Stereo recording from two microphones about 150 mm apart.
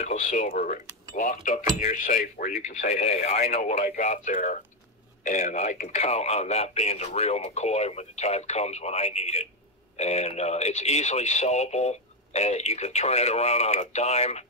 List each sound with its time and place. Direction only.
0.0 s speech: 55° left (ahead or behind)
1.9 s speech: 55° left (ahead or behind)
2.8 s speech: 45° left (ahead or behind)